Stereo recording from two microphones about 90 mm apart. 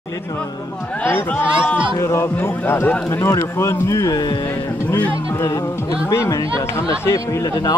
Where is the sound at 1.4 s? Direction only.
10° right (ahead or behind).